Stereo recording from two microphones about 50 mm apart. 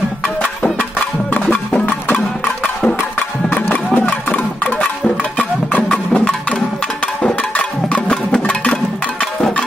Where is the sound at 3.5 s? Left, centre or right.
Left.